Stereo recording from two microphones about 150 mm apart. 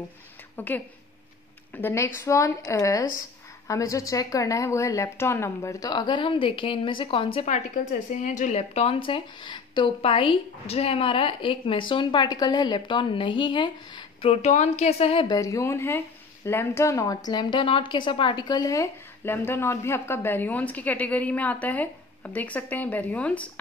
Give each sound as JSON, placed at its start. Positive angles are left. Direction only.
{"t": 0.6, "sound": "a woman's voice", "side_deg": 10}
{"t": 7.4, "sound": "speech", "side_deg": 55}
{"t": 14.3, "sound": "speech", "side_deg": 50}
{"t": 15.3, "sound": "a woman's voice", "side_deg": 20}